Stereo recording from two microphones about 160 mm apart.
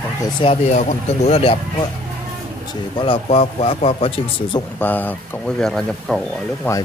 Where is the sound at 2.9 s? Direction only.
35° left (ahead or behind).